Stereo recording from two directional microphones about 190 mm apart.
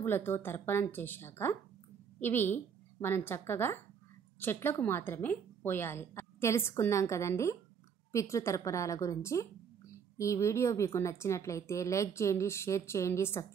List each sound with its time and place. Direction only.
0.0 s a woman's voice: 10° left (ahead or behind)